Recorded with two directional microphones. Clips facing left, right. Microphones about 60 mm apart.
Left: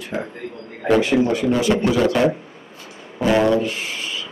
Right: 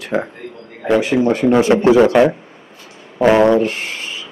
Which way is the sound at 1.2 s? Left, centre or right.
Right.